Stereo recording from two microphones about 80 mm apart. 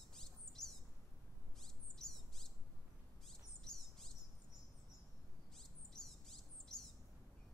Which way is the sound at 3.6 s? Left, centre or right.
Centre.